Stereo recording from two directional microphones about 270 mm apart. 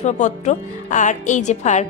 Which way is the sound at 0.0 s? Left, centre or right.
Left.